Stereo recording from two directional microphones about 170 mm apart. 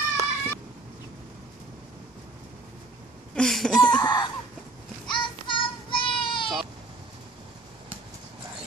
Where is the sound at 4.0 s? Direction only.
25° left (ahead or behind).